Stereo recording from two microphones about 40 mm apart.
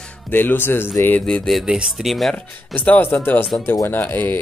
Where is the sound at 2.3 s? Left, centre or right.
Left.